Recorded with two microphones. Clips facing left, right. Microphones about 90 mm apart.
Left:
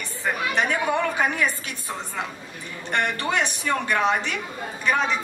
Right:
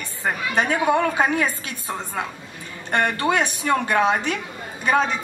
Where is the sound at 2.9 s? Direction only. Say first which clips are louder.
Right 4 dB; 20° right (ahead or behind).